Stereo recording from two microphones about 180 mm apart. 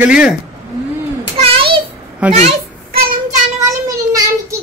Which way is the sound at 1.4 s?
30° right (ahead or behind).